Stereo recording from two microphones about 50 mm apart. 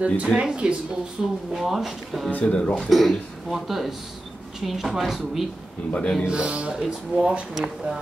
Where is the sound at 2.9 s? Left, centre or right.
Centre.